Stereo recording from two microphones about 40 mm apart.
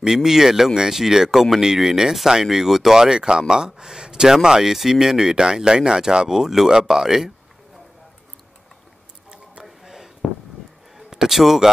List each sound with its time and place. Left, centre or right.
0.0 s speech: centre
10.2 s a sound: centre
11.0 s a man's voice: centre